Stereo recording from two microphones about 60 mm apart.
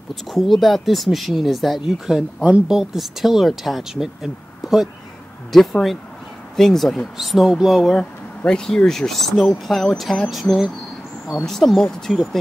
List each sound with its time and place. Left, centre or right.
0.1 s speech: centre
8.0 s a sound: centre
8.5 s speech: centre